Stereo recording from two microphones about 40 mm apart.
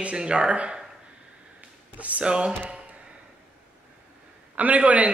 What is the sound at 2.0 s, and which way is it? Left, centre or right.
Speech, right.